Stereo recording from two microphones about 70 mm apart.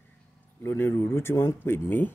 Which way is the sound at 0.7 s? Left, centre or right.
Left.